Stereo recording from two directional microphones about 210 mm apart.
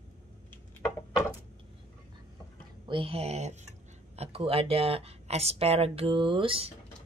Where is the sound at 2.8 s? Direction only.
25° right (ahead or behind).